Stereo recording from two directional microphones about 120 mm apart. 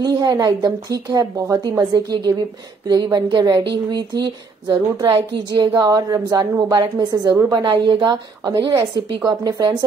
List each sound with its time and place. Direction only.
0.0 s speech: 35° right (ahead or behind)
7.5 s speech: 40° right (ahead or behind)